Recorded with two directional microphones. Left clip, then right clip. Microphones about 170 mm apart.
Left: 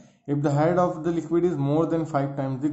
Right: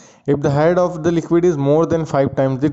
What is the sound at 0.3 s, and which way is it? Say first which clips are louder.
Speech: right 8 dB; 45° right (ahead or behind).